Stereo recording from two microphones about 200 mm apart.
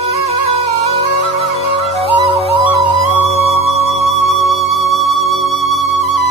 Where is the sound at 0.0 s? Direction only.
30° right (ahead or behind).